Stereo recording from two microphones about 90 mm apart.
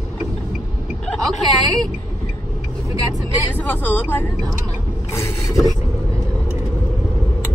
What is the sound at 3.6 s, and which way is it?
Speech, 20° left (ahead or behind).